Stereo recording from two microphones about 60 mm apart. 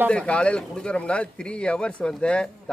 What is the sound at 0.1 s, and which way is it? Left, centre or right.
Speech, left.